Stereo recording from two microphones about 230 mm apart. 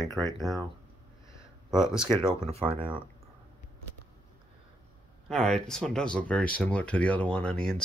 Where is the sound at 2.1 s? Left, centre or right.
Centre.